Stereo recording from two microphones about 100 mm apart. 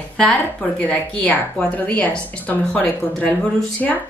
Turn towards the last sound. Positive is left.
turn(degrees=5)  # may be behind; listen again after turning